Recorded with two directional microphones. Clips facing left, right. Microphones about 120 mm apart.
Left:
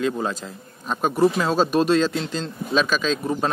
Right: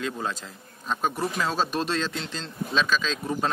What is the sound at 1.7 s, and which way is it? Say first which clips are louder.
Speech: left 9 dB; 10° left (ahead or behind).